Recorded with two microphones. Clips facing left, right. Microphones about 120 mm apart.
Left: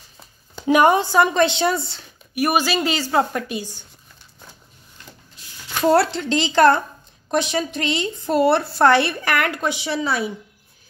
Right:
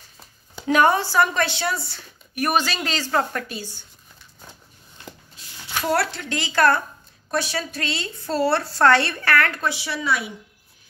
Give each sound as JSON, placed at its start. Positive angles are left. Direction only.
{"t": 0.7, "sound": "speech", "side_deg": 15}
{"t": 2.3, "sound": "a woman's voice", "side_deg": 10}
{"t": 5.9, "sound": "a woman's voice", "side_deg": 25}